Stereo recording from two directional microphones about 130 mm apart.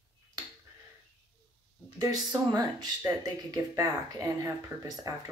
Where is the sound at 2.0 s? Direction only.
30° right (ahead or behind).